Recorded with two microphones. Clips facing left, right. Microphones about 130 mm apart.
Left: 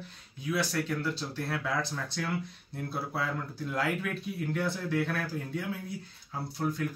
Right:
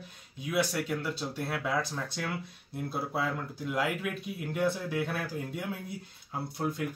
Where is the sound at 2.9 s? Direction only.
10° right (ahead or behind).